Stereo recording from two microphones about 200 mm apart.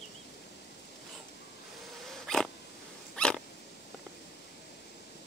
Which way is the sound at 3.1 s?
5° left (ahead or behind).